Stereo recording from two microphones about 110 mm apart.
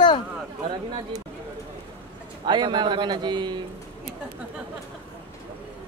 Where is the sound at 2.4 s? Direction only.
45° right (ahead or behind).